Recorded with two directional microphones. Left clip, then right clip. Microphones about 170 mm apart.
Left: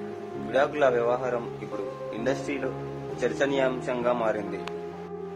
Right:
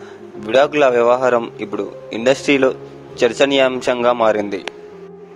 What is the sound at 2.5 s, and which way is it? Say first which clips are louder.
Speech: right 17 dB; 65° right (ahead or behind).